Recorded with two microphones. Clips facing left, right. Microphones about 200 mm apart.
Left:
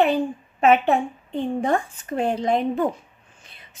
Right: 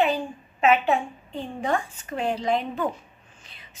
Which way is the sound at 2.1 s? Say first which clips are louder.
Left 3 dB; 50° left (ahead or behind).